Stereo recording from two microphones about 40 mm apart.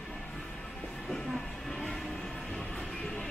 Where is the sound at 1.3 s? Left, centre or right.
Centre.